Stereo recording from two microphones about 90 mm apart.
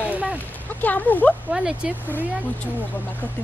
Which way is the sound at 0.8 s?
20° left (ahead or behind).